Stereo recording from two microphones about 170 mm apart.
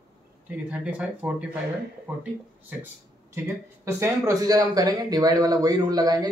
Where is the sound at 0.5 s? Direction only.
5° right (ahead or behind).